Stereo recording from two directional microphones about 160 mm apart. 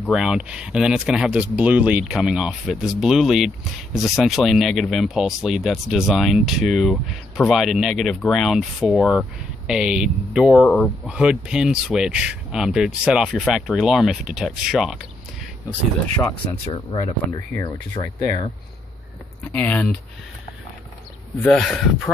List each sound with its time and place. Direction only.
0.1 s speech: 5° right (ahead or behind)
16.7 s speech: 30° left (ahead or behind)
19.4 s speech: 10° left (ahead or behind)
21.4 s speech: 5° left (ahead or behind)